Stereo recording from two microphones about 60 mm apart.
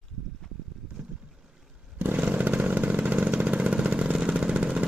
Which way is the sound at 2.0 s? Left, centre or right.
Right.